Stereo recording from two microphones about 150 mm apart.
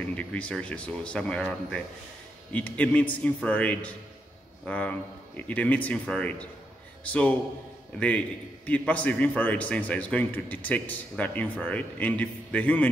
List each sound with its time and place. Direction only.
0.2 s a man's voice: 10° left (ahead or behind)
8.6 s a man's voice: 10° left (ahead or behind)